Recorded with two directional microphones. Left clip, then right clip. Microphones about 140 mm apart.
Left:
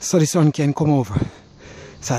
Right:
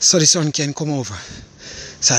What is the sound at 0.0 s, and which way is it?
Speech, 30° left (ahead or behind).